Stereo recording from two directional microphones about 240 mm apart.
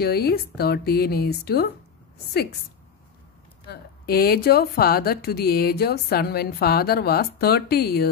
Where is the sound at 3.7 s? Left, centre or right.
Left.